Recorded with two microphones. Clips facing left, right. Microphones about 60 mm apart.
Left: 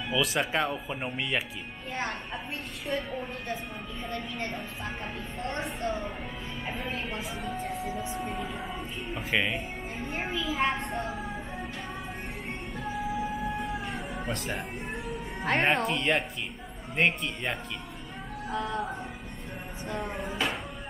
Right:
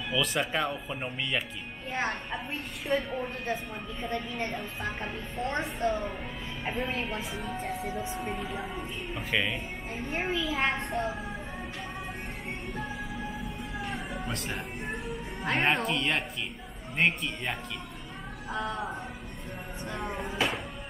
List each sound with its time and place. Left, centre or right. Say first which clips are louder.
0.1 s a woman's voice: left 1 dB; centre
1.9 s a woman's voice: right 2 dB; right
2.9 s a woman's voice: right 3 dB; centre
4.5 s a woman's voice: right 1 dB; centre
13.6 s music: left 2 dB; centre
14.2 s a woman's voice: left 2 dB; centre